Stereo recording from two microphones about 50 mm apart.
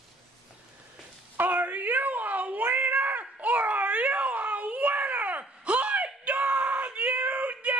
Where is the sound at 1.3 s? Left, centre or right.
Right.